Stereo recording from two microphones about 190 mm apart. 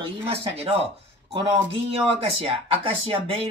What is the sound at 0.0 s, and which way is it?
Speech, 30° right (ahead or behind).